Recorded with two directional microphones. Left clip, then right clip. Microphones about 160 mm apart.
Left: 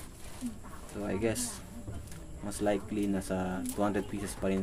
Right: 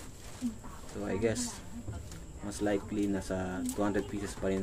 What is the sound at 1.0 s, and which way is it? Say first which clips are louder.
Speech: right 1 dB; 35° left (ahead or behind).